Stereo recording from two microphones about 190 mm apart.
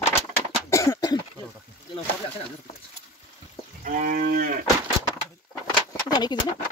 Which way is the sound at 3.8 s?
40° right (ahead or behind).